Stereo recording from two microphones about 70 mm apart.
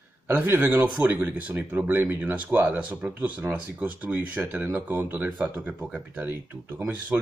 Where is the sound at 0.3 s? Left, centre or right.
Right.